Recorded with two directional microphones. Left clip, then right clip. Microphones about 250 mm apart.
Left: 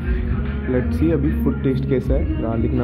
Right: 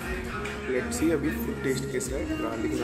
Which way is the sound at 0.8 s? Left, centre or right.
Centre.